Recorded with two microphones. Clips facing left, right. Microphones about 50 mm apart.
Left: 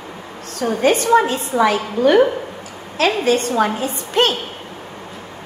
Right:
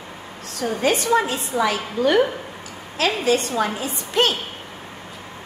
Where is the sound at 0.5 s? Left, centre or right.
Left.